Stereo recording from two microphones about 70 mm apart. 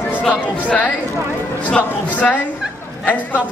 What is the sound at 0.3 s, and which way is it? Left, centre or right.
A man's voice, left.